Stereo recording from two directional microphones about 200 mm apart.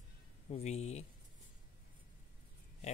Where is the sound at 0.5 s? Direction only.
35° left (ahead or behind).